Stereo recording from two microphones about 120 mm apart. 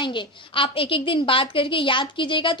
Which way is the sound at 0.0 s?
45° left (ahead or behind).